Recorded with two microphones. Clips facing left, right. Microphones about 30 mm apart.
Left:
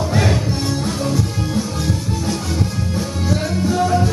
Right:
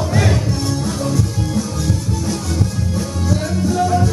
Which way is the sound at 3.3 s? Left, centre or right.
Centre.